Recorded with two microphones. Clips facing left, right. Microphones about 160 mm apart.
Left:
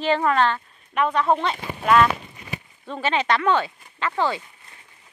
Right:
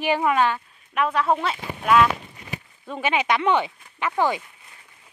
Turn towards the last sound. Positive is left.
turn(degrees=-15)  # may be behind; listen again after turning